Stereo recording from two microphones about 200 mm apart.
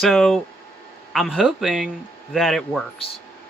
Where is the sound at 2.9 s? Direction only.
30° left (ahead or behind).